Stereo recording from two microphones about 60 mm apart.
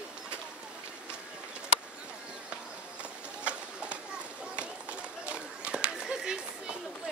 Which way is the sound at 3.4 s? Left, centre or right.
Centre.